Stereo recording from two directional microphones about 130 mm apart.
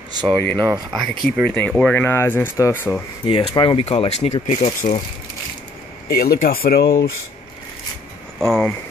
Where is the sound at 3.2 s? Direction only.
40° left (ahead or behind); by 5.0 s 55° left (ahead or behind).